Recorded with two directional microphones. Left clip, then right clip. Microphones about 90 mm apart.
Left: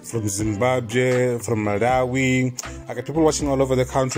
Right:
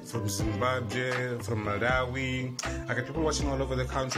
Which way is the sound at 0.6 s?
35° left (ahead or behind).